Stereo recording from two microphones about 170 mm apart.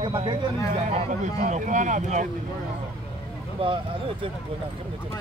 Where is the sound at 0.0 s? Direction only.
30° right (ahead or behind).